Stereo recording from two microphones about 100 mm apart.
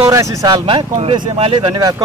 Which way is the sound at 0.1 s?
35° right (ahead or behind).